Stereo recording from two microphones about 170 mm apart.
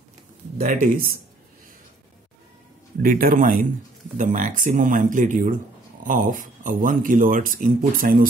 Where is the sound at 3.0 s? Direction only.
55° right (ahead or behind).